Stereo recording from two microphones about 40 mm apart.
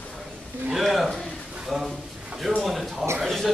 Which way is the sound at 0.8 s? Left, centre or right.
Centre.